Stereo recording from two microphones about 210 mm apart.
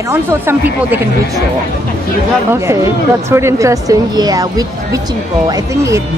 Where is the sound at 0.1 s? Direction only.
10° right (ahead or behind).